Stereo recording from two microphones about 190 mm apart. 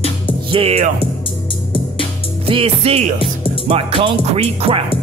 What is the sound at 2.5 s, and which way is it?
Speech, 30° right (ahead or behind).